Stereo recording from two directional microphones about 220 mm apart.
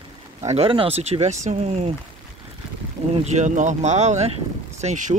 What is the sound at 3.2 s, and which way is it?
Speech, 35° right (ahead or behind).